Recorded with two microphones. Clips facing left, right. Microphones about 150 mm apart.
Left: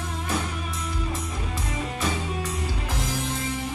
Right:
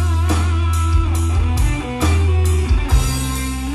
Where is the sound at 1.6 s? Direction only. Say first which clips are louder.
Right 7 dB; 90° right.